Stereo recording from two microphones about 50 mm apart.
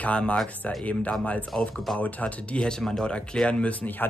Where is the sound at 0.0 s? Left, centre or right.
Left.